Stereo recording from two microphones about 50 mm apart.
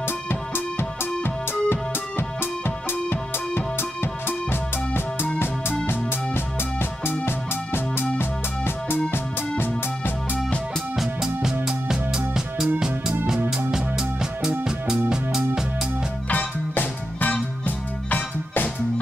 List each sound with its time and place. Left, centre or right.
0.3 s music: left
11.2 s music: centre
16.3 s music: left